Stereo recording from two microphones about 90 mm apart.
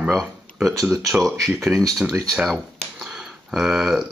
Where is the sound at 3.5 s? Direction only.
5° right (ahead or behind).